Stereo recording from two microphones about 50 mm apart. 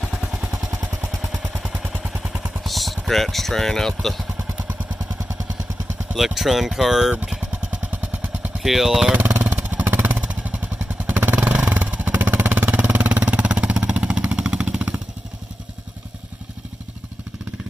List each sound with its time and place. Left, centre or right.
2.6 s speech: centre
6.1 s speech: centre
7.3 s vehicle: right
8.6 s speech: centre
9.1 s a sound: right
9.5 s vehicle: right